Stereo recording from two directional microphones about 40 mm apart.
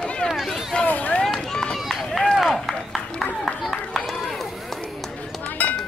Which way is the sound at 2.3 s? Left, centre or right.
Centre.